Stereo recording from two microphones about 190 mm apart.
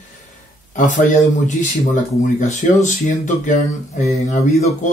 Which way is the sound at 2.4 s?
40° left (ahead or behind).